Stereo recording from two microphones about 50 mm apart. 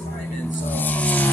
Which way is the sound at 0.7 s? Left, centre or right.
Left.